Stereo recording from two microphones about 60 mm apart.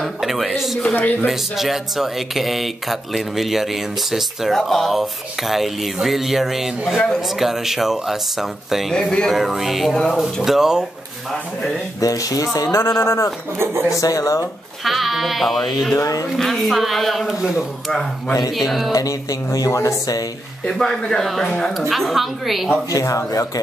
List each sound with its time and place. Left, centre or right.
0.0 s speech: centre
8.9 s speech: centre
9.3 s speech: centre
12.0 s speech: left
12.7 s speech: left
14.9 s speech: centre
16.0 s speech: left
16.3 s speech: centre
17.3 s speech: centre
18.3 s speech: left
20.6 s speech: centre
22.8 s speech: left